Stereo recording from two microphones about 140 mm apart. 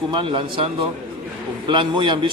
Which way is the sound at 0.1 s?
40° right (ahead or behind).